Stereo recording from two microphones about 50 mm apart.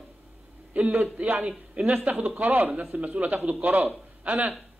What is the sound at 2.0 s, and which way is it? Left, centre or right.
A man's voice, right.